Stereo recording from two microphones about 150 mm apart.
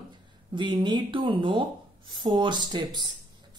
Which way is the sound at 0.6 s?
30° right (ahead or behind).